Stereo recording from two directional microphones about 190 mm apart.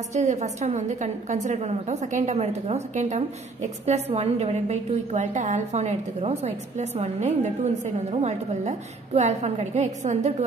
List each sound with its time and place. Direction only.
0.1 s a woman's voice: 35° right (ahead or behind)